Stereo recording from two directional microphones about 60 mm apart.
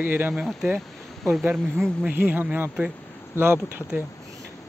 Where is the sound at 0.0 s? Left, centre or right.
Right.